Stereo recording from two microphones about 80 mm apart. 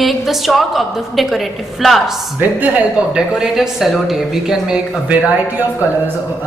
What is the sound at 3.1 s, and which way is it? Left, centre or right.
A woman's voice, centre.